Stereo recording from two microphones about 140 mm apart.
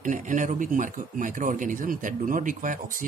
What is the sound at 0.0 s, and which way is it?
Speech, 65° right (ahead or behind).